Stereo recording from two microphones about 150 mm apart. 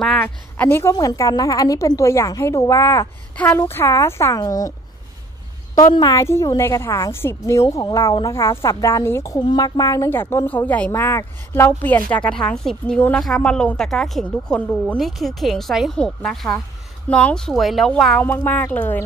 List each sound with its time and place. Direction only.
0.0 s a woman's voice: 5° left (ahead or behind); by 4.7 s 25° left (ahead or behind)
5.9 s a woman's voice: 30° left (ahead or behind)
6.1 s a woman's voice: 20° left (ahead or behind)